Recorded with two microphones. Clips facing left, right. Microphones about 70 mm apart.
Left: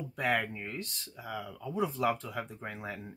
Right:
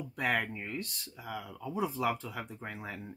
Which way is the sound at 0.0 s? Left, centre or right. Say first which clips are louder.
Left 1 dB; centre.